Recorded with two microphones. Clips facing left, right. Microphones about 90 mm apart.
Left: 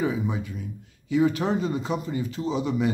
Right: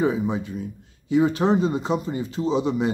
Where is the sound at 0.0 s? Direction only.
30° right (ahead or behind).